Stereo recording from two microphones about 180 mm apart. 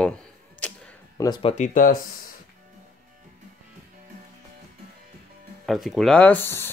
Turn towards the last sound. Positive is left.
turn(degrees=10)  # may be behind; listen again after turning